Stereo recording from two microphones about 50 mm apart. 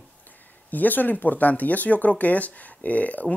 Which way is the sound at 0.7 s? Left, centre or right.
Left.